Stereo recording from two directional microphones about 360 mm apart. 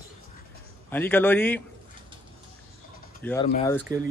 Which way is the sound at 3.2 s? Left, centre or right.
Centre.